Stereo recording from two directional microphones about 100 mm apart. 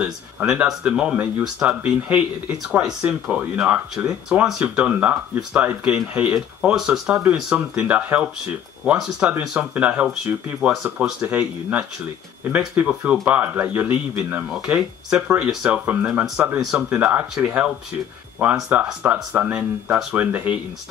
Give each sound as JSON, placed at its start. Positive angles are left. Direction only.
{"t": 0.0, "sound": "speech", "side_deg": -10}
{"t": 11.2, "sound": "speech", "side_deg": -15}